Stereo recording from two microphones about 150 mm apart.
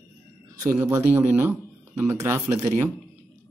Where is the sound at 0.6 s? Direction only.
20° right (ahead or behind).